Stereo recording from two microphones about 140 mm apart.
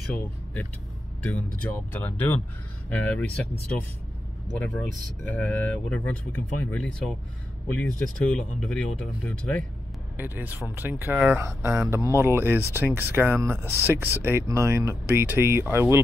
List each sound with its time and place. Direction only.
0.0 s speech: 10° left (ahead or behind)
4.6 s speech: 10° left (ahead or behind)
10.1 s speech: 15° right (ahead or behind)